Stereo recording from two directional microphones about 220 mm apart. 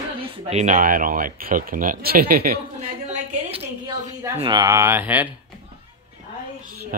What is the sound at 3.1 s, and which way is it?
A woman's voice, 25° right (ahead or behind).